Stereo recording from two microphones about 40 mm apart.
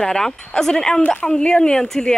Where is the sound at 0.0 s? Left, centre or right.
Centre.